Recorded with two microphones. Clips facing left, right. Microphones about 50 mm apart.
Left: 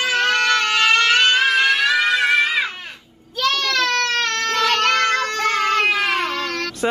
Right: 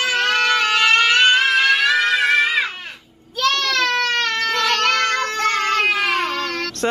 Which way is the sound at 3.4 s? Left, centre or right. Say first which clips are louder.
Right 1 dB; centre.